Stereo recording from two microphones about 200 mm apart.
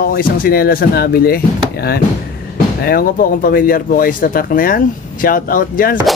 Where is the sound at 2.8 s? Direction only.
50° left (ahead or behind).